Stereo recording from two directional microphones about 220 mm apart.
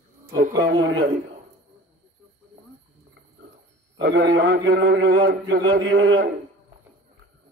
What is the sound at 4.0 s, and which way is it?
A man's voice, 50° right (ahead or behind).